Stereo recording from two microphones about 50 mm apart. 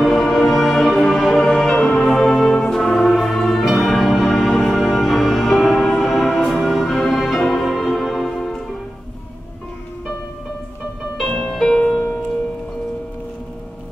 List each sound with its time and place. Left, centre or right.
0.0 s music: centre
11.1 s music: centre